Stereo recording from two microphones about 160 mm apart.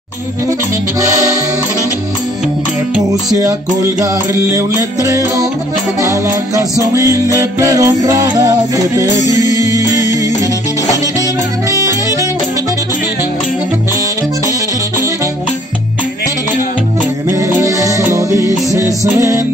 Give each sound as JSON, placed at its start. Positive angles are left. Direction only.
{"t": 3.1, "sound": "music", "side_deg": -20}
{"t": 17.3, "sound": "music", "side_deg": -20}